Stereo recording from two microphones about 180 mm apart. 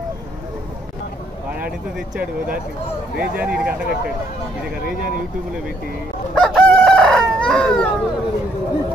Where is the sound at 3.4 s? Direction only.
10° right (ahead or behind).